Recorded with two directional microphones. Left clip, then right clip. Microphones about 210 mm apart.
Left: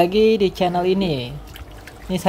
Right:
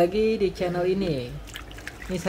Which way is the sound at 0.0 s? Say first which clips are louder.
Left 6 dB; 30° left (ahead or behind).